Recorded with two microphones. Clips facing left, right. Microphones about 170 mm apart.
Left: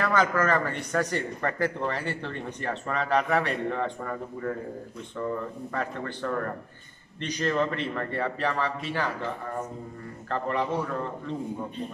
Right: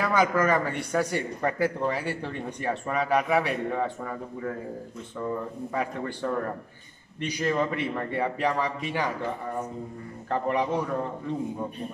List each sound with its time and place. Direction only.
0.0 s a man's voice: 10° right (ahead or behind)
5.7 s a man's voice: 10° right (ahead or behind)
10.3 s a man's voice: 15° right (ahead or behind)